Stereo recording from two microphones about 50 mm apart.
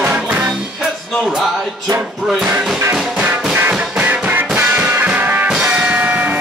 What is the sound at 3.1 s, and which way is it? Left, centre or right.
Music, right.